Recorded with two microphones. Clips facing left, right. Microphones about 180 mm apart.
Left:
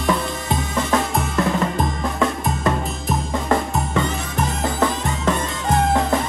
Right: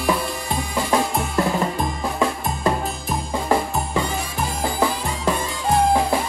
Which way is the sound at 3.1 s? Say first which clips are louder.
Left 1 dB; 5° right (ahead or behind).